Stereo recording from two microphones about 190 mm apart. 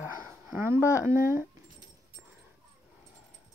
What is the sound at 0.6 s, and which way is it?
Speech, 15° right (ahead or behind).